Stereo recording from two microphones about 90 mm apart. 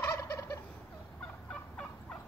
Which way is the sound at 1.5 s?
10° left (ahead or behind).